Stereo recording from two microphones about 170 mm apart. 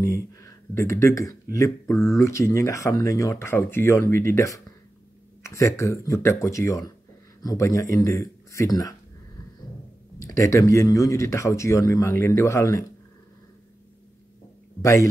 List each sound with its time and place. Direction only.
0.0 s speech: 20° left (ahead or behind)
10.1 s speech: 20° left (ahead or behind)
14.8 s speech: 20° left (ahead or behind)